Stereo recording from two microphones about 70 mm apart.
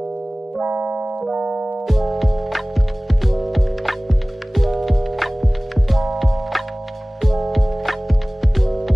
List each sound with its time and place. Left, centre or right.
0.6 s keyboard: centre
1.3 s music: centre
1.9 s music: centre